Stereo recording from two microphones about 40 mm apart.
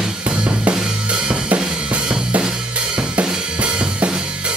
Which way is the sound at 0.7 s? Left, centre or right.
Centre.